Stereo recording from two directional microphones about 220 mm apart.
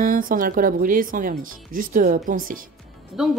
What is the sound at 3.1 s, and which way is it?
Speech, centre (ahead or behind).